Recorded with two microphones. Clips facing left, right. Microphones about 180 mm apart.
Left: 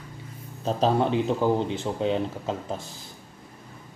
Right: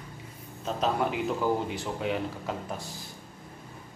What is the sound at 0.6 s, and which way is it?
Speech, 30° left (ahead or behind).